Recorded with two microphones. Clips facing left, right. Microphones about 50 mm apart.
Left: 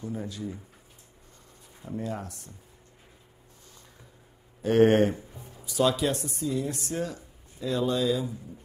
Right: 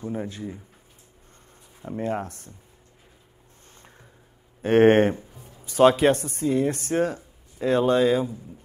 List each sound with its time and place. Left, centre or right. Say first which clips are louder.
0.0 s speech: right 4 dB; right
1.9 s speech: right 6 dB; right
4.6 s speech: right 4 dB; right